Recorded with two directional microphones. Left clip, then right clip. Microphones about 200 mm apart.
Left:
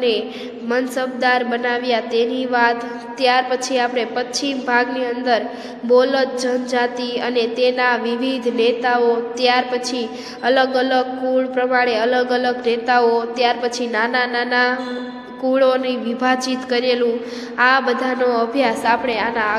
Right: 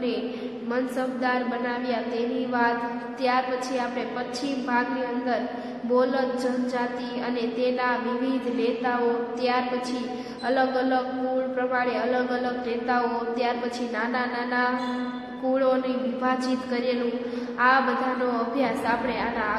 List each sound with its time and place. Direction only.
0.7 s a woman's voice: 35° left (ahead or behind)